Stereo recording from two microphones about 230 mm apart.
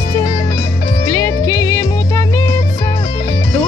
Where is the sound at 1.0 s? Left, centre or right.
Centre.